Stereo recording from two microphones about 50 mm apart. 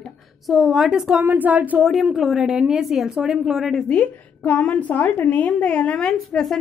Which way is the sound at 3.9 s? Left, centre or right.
Left.